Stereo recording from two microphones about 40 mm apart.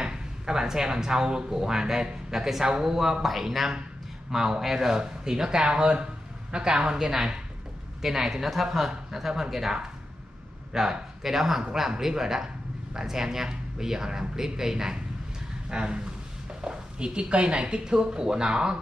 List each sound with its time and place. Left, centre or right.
0.0 s speech: centre